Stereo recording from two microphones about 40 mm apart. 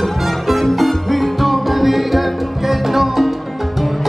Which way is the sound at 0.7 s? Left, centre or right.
Centre.